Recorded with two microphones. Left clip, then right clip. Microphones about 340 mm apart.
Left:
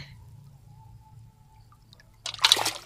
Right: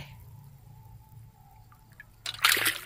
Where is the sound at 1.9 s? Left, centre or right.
Left.